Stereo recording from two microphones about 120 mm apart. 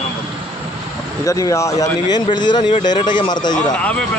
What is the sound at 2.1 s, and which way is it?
Speech, 35° left (ahead or behind).